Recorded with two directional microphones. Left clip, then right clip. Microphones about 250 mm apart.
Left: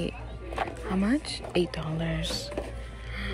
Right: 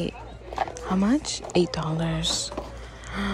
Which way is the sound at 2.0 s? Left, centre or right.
Right.